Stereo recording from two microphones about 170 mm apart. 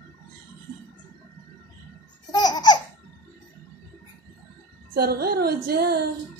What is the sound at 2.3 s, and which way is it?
Laughter, 25° left (ahead or behind).